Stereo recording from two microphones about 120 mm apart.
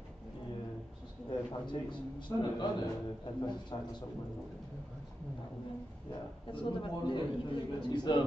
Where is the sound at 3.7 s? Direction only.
40° left (ahead or behind).